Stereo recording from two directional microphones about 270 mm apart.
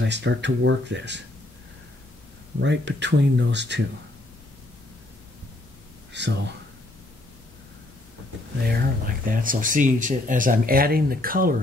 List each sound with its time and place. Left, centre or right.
0.0 s speech: right
2.6 s speech: right
6.1 s speech: right
8.6 s speech: right